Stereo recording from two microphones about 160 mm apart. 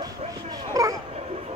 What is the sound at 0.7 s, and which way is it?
Dog, 20° right (ahead or behind).